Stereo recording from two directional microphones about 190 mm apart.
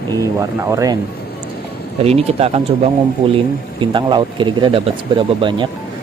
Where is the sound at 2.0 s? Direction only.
30° right (ahead or behind).